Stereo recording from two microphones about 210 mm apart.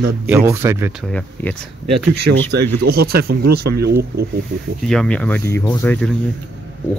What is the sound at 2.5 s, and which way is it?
Speech, 50° right (ahead or behind).